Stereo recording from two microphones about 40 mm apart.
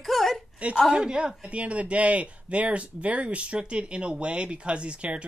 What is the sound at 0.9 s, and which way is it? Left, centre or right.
Speech, right.